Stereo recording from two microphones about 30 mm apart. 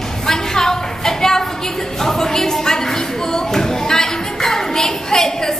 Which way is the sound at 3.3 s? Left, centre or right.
Centre.